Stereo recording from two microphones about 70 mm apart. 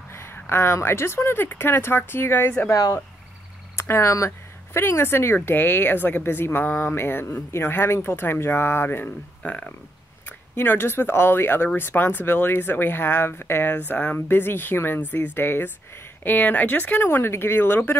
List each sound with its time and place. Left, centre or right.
0.1 s speech: left
3.7 s speech: left
9.4 s speech: centre
10.2 s speech: left